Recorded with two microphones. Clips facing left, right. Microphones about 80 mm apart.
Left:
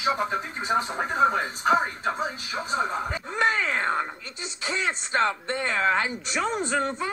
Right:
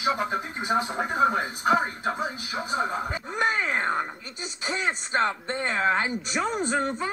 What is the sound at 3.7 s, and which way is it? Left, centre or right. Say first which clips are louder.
Speech: even; right.